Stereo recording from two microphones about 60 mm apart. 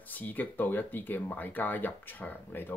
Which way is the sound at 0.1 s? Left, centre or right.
Left.